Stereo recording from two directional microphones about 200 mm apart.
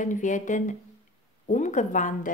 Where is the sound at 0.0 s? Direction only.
40° left (ahead or behind).